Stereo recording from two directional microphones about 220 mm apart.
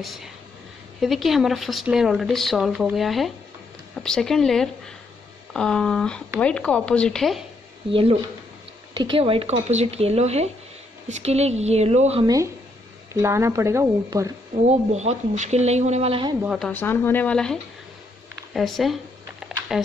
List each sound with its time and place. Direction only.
0.0 s speech: centre (ahead or behind)
7.9 s speech: 25° right (ahead or behind)
13.1 s speech: 10° right (ahead or behind)
14.5 s speech: 30° right (ahead or behind)
16.4 s speech: centre (ahead or behind)
19.4 s a sound: centre (ahead or behind)